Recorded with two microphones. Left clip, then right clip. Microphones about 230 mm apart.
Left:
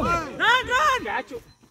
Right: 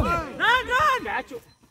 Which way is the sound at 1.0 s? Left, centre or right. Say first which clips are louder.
Left 1 dB; centre.